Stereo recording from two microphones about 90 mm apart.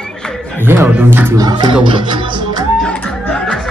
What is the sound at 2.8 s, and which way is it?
Music, 10° left (ahead or behind).